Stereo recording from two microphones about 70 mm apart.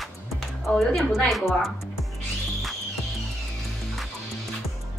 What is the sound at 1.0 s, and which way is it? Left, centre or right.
Speech, centre.